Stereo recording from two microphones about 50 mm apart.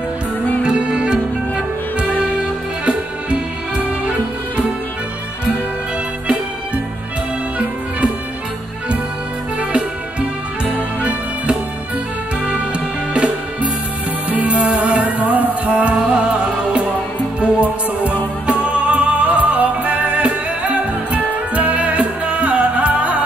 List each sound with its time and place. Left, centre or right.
0.7 s music: centre
2.8 s music: right
9.6 s music: right
13.1 s music: right